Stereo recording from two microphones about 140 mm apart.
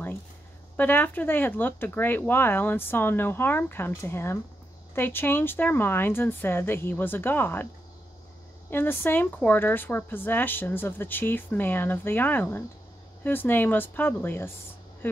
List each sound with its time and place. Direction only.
0.7 s speech: 15° left (ahead or behind)
8.6 s speech: 15° left (ahead or behind)